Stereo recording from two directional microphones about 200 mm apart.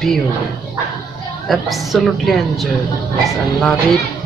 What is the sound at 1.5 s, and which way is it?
Speech, centre (ahead or behind).